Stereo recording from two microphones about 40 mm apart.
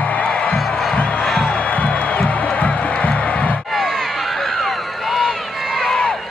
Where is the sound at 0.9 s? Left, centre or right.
Left.